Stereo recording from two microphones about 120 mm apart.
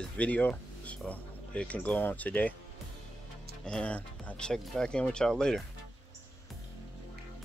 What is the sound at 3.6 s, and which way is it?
Speech, 10° left (ahead or behind).